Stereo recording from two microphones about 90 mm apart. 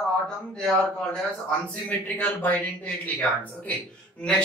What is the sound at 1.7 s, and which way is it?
Speech, 15° left (ahead or behind).